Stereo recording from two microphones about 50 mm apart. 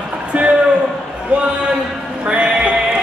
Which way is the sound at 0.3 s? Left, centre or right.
Right.